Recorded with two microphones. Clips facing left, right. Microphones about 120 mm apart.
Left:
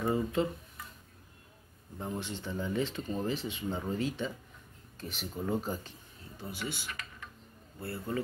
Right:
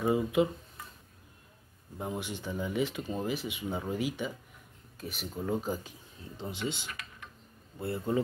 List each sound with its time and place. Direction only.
0.0 s speech: 10° right (ahead or behind)
2.0 s speech: 15° right (ahead or behind)
6.3 s speech: 25° right (ahead or behind)
6.9 s computer keyboard: 5° right (ahead or behind)
7.8 s speech: 20° right (ahead or behind)